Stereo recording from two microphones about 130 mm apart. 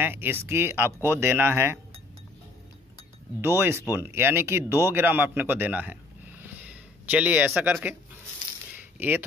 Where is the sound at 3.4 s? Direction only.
20° right (ahead or behind).